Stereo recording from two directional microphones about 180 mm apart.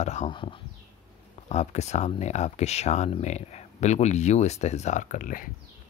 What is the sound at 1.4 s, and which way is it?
Speech, 40° left (ahead or behind).